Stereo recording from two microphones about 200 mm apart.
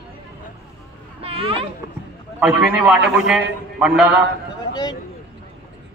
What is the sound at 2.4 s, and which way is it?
A man's voice, 5° right (ahead or behind).